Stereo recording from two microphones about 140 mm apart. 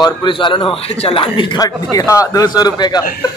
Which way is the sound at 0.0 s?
35° left (ahead or behind).